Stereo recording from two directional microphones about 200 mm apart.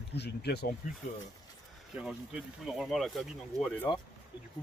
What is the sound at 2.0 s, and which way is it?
Speech, 5° right (ahead or behind).